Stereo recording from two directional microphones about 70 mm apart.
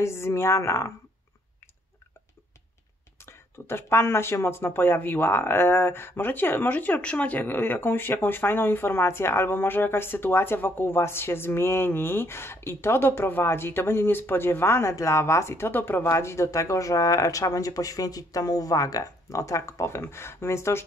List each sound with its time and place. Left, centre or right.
0.0 s speech: left
3.3 s speech: left